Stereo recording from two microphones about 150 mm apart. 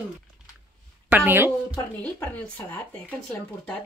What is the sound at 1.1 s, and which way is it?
Speech, 15° right (ahead or behind).